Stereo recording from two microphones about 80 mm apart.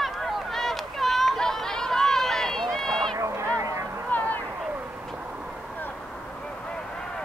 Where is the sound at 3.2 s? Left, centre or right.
Right.